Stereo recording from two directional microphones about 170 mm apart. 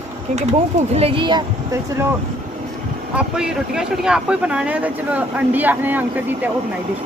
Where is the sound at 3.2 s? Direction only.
5° right (ahead or behind).